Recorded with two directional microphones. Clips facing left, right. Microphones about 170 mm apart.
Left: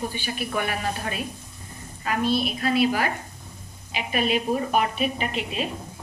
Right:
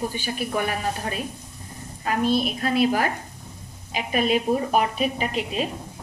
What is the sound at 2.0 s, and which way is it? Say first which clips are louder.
A woman's voice: right 2 dB; 45° right (ahead or behind).